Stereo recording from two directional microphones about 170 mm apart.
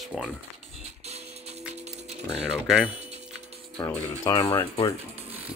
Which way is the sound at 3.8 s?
20° left (ahead or behind).